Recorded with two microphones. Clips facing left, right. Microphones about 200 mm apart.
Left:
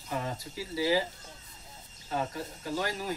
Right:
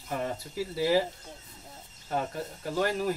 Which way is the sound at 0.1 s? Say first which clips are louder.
Right 2 dB; 55° right (ahead or behind).